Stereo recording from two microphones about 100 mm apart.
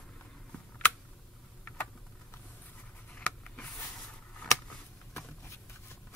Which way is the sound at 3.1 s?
15° left (ahead or behind).